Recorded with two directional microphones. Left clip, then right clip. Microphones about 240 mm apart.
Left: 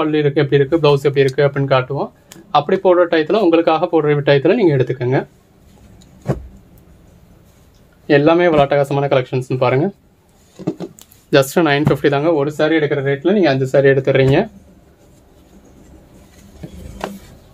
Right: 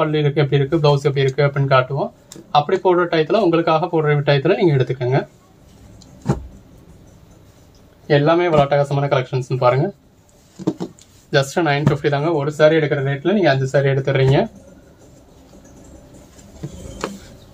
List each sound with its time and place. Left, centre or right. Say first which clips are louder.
0.0 s speech: left 3 dB; left
8.1 s speech: left 3 dB; left
11.2 s speech: left 4 dB; left